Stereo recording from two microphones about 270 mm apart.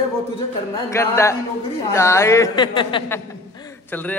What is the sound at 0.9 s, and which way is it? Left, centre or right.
A man's voice, centre.